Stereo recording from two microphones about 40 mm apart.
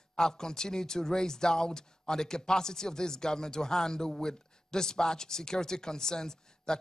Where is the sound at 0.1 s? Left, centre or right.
Centre.